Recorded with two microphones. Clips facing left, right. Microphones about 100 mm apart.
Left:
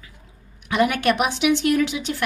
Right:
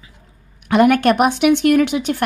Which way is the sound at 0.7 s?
50° right (ahead or behind).